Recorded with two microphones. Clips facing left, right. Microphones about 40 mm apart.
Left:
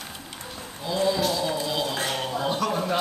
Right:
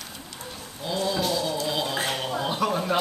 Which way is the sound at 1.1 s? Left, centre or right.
Centre.